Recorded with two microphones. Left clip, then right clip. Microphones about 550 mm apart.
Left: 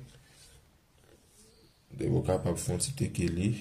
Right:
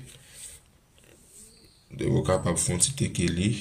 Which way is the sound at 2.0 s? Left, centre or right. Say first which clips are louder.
Right 5 dB; left.